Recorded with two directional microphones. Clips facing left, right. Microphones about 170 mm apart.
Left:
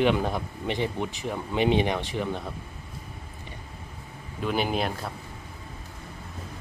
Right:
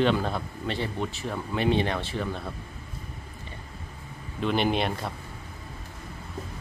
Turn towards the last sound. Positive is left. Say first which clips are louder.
# right 1 dB
turn(degrees=5)  # may be behind; listen again after turning